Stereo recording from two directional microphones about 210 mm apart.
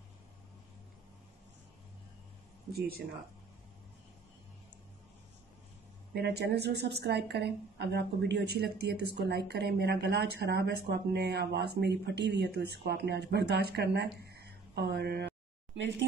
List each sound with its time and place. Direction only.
6.1 s speech: 50° right (ahead or behind)
15.7 s speech: 60° right (ahead or behind)